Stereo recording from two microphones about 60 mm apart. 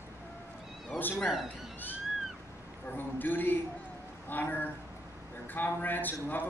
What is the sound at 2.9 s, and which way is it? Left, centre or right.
A man's voice, left.